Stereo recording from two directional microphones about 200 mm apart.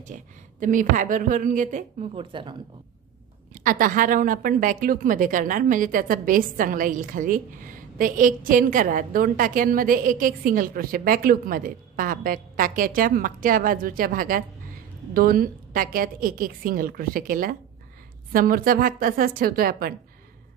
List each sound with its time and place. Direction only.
0.0 s a woman's voice: 40° right (ahead or behind)
2.1 s speech: 25° right (ahead or behind)
3.5 s a woman's voice: 45° right (ahead or behind)